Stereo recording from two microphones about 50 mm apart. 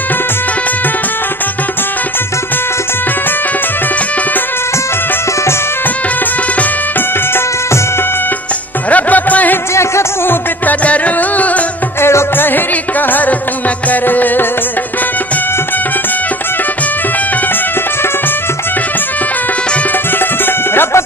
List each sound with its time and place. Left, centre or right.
8.9 s music: left
10.8 s music: left
12.0 s music: left
12.4 s music: left
20.2 s music: left